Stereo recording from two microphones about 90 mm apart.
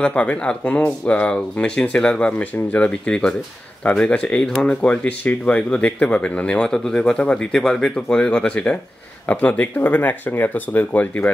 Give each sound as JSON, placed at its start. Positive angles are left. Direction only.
{"t": 0.0, "sound": "speech", "side_deg": 15}